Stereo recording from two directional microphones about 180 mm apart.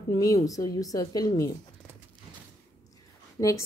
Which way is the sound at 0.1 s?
20° left (ahead or behind).